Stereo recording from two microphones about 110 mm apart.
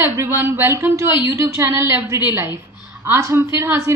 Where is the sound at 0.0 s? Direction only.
20° right (ahead or behind).